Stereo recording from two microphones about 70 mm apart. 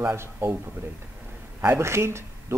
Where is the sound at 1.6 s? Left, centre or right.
Right.